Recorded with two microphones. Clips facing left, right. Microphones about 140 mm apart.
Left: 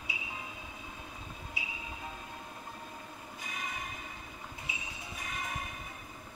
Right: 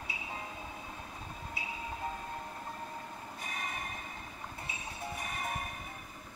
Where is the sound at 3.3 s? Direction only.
50° right (ahead or behind).